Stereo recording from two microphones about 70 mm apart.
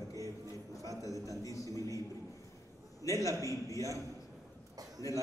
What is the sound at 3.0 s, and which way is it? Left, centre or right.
Speech, left.